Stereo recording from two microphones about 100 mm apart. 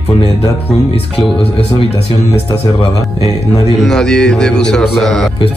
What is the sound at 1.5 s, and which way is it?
Speech, 80° left.